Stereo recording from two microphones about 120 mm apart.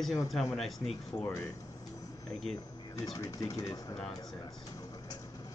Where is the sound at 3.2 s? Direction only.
30° left (ahead or behind).